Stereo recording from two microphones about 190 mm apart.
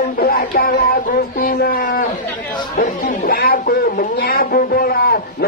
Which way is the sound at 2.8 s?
50° left (ahead or behind).